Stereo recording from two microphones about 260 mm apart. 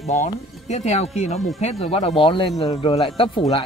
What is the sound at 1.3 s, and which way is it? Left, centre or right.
Music, centre.